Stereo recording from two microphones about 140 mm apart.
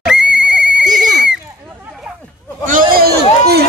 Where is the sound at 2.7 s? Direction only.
85° right.